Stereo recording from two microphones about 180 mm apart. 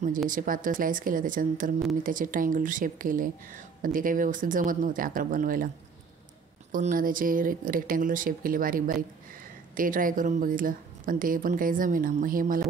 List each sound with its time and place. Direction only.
0.3 s a woman's voice: 50° right (ahead or behind)
6.7 s a woman's voice: 50° right (ahead or behind)